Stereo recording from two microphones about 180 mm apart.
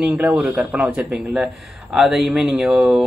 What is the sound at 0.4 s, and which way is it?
Speech, 5° right (ahead or behind).